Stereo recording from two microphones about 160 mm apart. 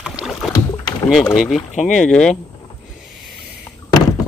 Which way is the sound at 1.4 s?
Centre (ahead or behind).